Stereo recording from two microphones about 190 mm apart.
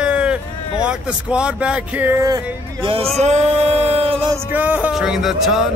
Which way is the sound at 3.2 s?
35° right (ahead or behind).